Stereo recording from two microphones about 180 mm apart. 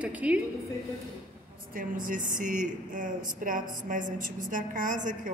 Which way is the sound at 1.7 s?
50° right (ahead or behind).